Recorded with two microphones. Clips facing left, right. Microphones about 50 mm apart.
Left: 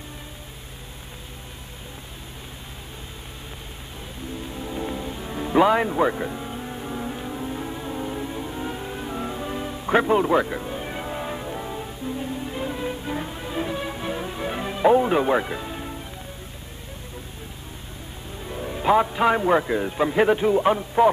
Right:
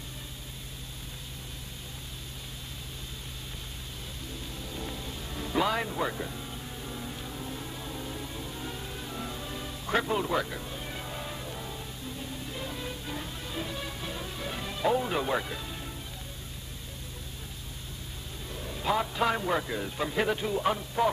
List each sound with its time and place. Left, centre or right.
4.4 s music: left
18.4 s a man's voice: left